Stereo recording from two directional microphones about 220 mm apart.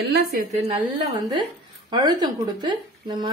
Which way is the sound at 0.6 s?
25° right (ahead or behind).